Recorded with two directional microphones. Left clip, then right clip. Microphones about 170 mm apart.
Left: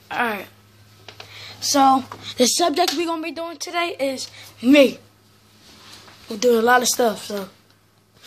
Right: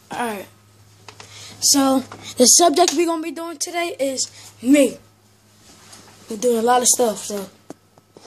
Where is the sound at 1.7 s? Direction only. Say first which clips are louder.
Left 2 dB; 25° right (ahead or behind).